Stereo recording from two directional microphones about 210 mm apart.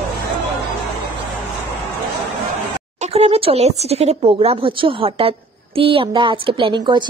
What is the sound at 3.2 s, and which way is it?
A woman's voice, 25° right (ahead or behind).